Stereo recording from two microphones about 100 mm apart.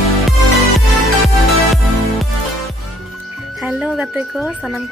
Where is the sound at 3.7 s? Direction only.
10° right (ahead or behind).